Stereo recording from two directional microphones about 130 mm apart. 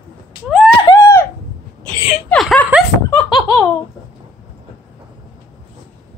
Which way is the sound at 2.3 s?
5° left (ahead or behind).